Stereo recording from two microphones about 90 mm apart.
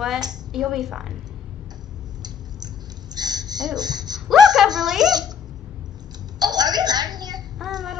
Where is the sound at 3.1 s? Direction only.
50° right (ahead or behind).